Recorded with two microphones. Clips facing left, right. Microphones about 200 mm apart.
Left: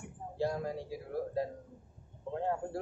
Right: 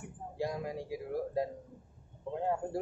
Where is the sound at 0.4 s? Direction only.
15° right (ahead or behind).